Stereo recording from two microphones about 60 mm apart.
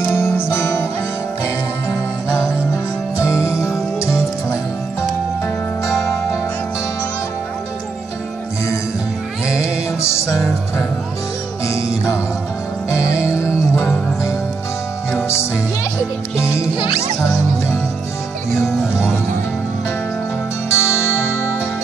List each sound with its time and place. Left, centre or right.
0.0 s music: left
3.2 s music: centre
10.0 s music: left
12.9 s music: centre
13.3 s music: left
20.7 s music: left